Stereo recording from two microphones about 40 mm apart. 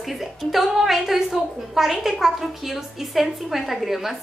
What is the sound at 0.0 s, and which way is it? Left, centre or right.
A woman's voice, centre.